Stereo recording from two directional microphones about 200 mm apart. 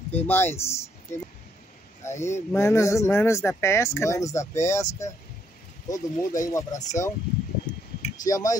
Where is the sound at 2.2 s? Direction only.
15° left (ahead or behind).